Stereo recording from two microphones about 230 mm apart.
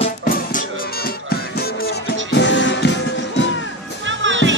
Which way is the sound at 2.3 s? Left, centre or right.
Left.